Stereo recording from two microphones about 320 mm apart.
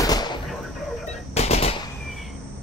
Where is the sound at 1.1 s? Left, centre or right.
Centre.